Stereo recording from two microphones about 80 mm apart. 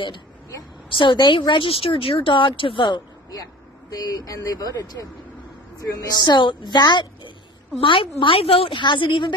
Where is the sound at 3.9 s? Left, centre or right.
Left.